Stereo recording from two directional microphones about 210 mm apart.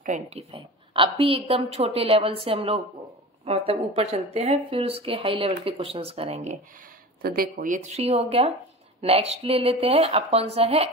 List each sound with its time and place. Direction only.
0.0 s speech: 35° right (ahead or behind)
7.2 s speech: 45° right (ahead or behind)